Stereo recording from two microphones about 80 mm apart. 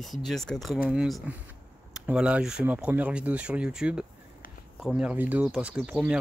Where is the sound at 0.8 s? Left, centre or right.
Centre.